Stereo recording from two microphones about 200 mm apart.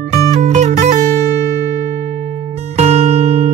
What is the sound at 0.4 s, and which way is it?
Music, 35° right (ahead or behind).